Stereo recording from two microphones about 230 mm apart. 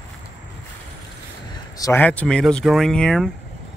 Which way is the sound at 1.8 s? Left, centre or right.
Centre.